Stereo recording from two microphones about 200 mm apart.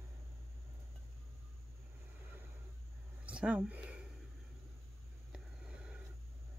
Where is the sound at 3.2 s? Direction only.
5° right (ahead or behind).